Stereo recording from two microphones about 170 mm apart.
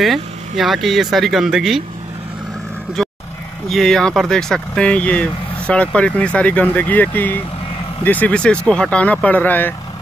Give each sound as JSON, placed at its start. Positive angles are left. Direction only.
{"t": 0.0, "sound": "speech", "side_deg": 0}
{"t": 3.0, "sound": "vehicle", "side_deg": 5}
{"t": 3.6, "sound": "speech", "side_deg": 0}